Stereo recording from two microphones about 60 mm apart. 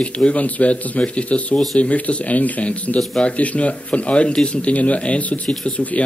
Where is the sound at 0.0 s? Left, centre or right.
Centre.